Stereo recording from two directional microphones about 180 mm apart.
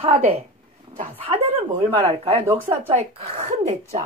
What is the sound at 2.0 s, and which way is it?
Speech, 35° right (ahead or behind).